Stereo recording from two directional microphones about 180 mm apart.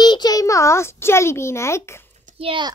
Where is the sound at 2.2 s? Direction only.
30° right (ahead or behind).